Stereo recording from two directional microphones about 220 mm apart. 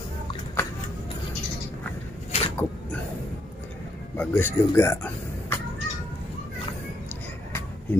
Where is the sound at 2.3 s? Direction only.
30° left (ahead or behind).